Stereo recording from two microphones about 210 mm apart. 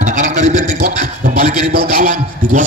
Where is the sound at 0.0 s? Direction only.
35° right (ahead or behind).